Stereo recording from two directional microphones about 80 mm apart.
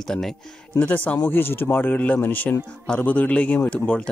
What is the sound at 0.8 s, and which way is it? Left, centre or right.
Speech, left.